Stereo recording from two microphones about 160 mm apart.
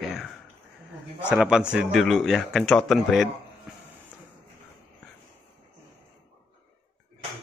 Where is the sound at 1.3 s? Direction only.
5° right (ahead or behind).